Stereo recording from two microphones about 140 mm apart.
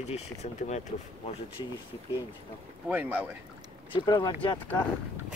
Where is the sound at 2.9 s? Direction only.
10° right (ahead or behind).